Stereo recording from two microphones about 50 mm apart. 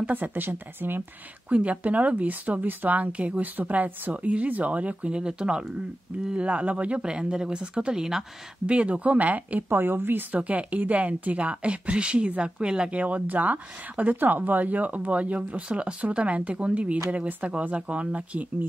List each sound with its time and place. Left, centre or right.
0.1 s speech: right
1.5 s speech: right; by 8.2 s centre
8.6 s speech: right
9.7 s speech: right
10.3 s speech: right
13.0 s speech: right